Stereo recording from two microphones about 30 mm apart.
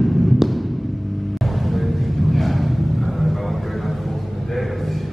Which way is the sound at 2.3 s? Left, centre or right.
Centre.